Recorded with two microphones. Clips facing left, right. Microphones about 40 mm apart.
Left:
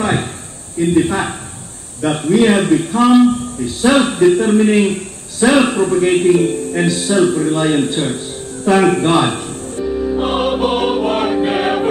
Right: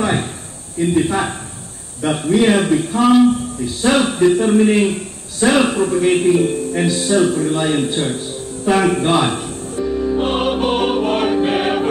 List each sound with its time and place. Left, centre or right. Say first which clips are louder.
0.0 s a sound: left 1 dB; centre
0.9 s speech: left 2 dB; centre
8.7 s music: left 3 dB; centre